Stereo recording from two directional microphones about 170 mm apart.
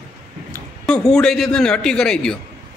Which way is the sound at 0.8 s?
5° left (ahead or behind).